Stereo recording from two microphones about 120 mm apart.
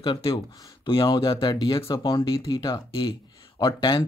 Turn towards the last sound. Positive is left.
turn(degrees=45)  # may be behind; listen again after turning